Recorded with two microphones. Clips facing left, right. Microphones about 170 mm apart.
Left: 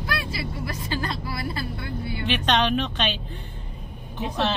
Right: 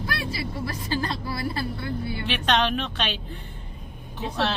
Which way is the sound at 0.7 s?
30° right (ahead or behind).